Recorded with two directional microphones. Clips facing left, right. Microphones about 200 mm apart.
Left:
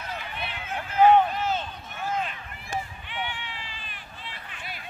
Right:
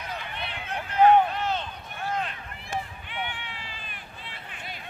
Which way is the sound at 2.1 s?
5° left (ahead or behind).